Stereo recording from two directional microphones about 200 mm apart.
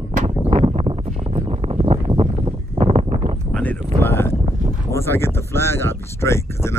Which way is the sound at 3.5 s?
5° left (ahead or behind).